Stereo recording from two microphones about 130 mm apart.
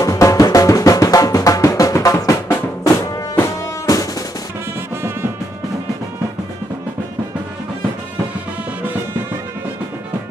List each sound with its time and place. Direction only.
0.0 s music: 25° left (ahead or behind)
3.8 s drum: 25° left (ahead or behind)